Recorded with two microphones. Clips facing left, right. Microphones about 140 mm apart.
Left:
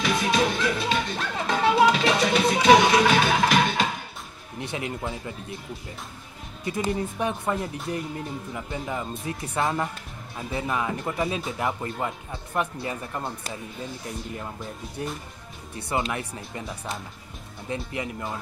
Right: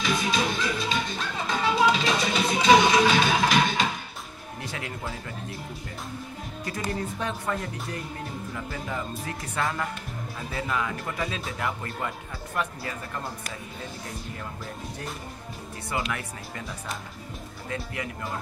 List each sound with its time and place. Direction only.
0.0 s music: 60° left (ahead or behind)
4.6 s speech: 20° left (ahead or behind)
6.6 s speech: 25° left (ahead or behind)
15.9 s speech: 30° left (ahead or behind)
17.6 s speech: 20° left (ahead or behind)